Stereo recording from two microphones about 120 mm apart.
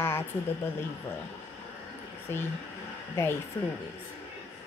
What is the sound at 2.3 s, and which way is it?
Speech, 20° left (ahead or behind).